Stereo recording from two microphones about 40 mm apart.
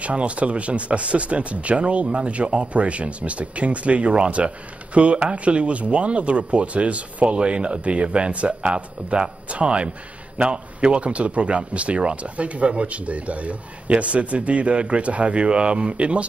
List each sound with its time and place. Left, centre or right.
0.0 s speech: right